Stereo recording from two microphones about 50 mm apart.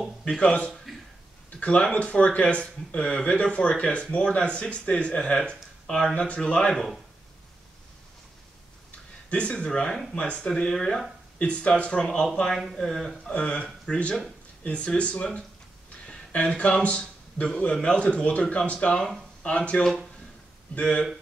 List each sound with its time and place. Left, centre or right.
0.2 s speech: centre
0.9 s a sound: centre
1.6 s speech: left
9.3 s speech: left
11.3 s speech: left
12.9 s speech: centre
13.3 s speech: left